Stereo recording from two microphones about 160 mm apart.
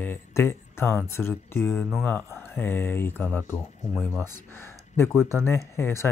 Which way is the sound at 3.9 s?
Centre (ahead or behind).